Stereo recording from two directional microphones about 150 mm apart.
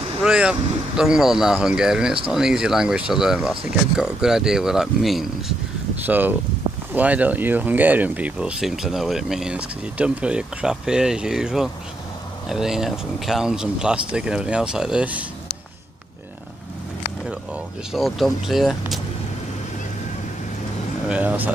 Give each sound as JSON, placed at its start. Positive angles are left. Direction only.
{"t": 0.2, "sound": "speech", "side_deg": -5}
{"t": 6.0, "sound": "speech", "side_deg": -10}
{"t": 17.9, "sound": "speech", "side_deg": 0}
{"t": 21.1, "sound": "speech", "side_deg": -10}